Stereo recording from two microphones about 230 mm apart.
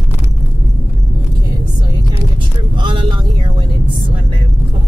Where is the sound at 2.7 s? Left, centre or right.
Centre.